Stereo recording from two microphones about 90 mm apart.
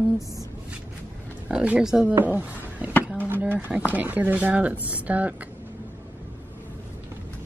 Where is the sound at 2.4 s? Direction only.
20° right (ahead or behind).